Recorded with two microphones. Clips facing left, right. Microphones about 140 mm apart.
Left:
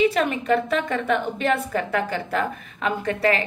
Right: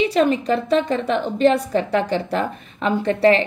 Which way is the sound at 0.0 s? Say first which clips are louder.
Right 3 dB; 30° right (ahead or behind).